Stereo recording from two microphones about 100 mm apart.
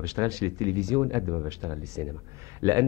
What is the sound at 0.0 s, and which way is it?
Speech, 35° right (ahead or behind).